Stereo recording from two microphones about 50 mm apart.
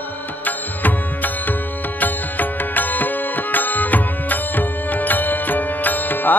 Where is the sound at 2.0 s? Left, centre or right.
Left.